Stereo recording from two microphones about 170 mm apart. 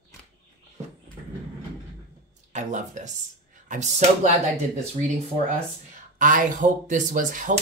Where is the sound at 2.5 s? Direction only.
45° right (ahead or behind).